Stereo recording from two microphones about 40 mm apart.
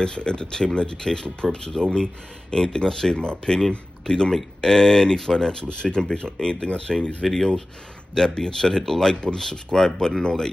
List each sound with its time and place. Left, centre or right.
0.0 s speech: left
6.7 s speech: left